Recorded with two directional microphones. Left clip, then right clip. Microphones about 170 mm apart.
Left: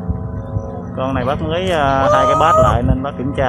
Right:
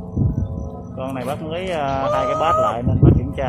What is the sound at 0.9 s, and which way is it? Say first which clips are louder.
Speech: left 7 dB; 10° left (ahead or behind).